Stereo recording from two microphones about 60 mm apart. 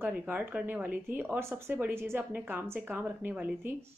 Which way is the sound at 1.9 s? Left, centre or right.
Right.